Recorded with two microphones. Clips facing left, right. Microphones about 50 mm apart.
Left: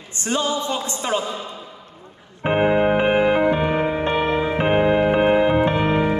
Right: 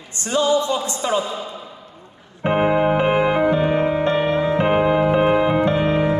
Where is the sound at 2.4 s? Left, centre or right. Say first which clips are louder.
Even; centre.